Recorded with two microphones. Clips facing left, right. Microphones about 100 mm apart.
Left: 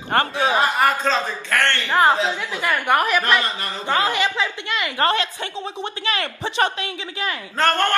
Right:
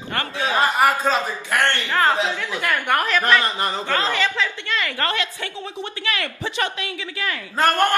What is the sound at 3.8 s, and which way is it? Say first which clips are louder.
A woman's voice: left 4 dB; 15° left (ahead or behind).